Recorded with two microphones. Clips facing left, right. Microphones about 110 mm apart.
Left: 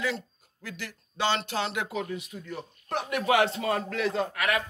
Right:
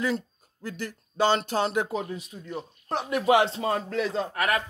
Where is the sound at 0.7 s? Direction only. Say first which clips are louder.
Right 5 dB; 40° right (ahead or behind).